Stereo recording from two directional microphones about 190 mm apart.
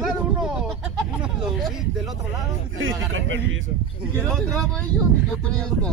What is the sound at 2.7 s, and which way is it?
Speech, 90° right.